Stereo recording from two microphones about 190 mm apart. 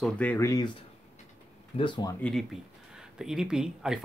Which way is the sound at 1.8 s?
25° left (ahead or behind).